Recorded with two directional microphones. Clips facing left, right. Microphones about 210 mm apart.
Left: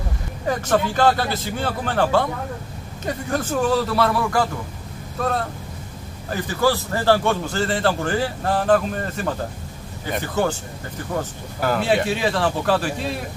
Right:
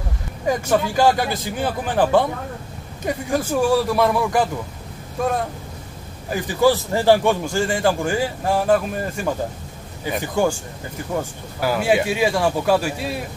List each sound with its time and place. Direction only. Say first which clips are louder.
0.5 s a man's voice: right 1 dB; 10° right (ahead or behind)
11.6 s a man's voice: right 1 dB; 10° right (ahead or behind)